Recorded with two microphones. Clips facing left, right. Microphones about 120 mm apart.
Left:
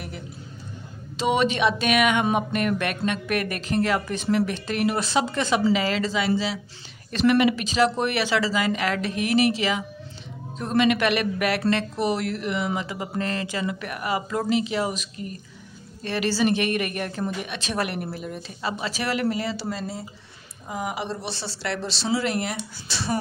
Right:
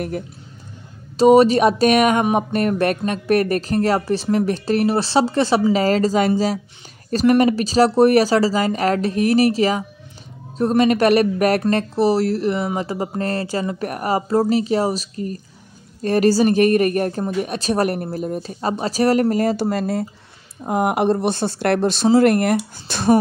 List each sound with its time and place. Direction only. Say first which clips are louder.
1.1 s speech: right 11 dB; 40° right (ahead or behind)